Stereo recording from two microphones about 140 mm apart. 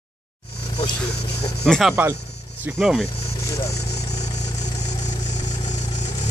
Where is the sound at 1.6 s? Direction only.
Centre (ahead or behind).